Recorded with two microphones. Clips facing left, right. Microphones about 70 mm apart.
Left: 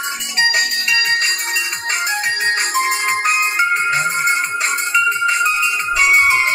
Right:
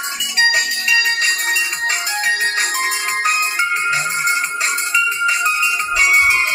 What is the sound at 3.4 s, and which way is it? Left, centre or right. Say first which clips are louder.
Music: left 2 dB; left.